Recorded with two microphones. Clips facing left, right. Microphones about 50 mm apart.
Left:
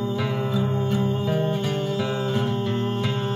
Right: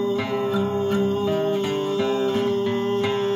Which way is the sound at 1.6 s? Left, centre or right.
Centre.